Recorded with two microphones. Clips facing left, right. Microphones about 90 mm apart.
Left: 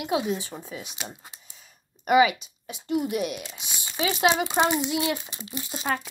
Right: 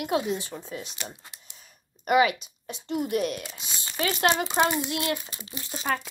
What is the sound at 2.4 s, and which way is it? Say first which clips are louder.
A woman's voice: even; 5° left (ahead or behind).